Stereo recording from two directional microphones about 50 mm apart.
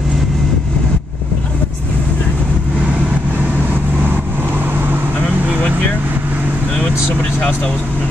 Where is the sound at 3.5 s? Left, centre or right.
Right.